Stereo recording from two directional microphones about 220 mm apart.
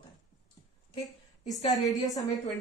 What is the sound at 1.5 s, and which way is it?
Speech, 15° left (ahead or behind).